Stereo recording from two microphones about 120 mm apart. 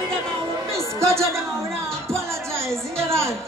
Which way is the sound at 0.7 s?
25° right (ahead or behind).